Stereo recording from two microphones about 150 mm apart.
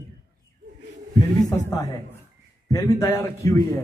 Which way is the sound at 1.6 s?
25° left (ahead or behind).